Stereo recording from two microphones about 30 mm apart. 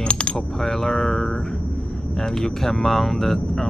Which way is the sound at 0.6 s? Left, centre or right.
Centre.